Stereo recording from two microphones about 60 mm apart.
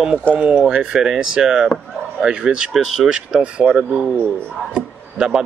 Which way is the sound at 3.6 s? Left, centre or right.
Right.